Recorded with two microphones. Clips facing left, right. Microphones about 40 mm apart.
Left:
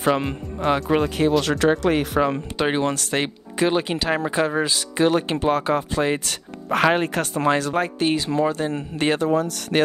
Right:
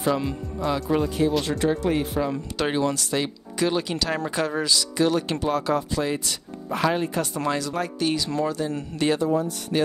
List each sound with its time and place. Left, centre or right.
0.0 s speech: left
1.4 s speech: left
2.7 s speech: left
3.5 s speech: left
4.7 s speech: left
9.2 s speech: left